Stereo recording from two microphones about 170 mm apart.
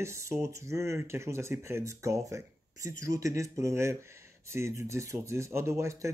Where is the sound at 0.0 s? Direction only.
15° right (ahead or behind).